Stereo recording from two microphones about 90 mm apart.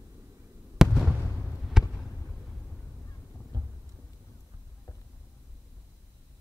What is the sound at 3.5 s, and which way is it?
Thunder, 50° right (ahead or behind).